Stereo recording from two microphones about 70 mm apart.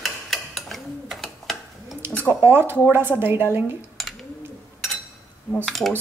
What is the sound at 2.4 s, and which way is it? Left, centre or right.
Speech, right.